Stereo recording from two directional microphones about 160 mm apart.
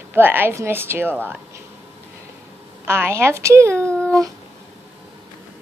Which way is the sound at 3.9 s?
5° left (ahead or behind).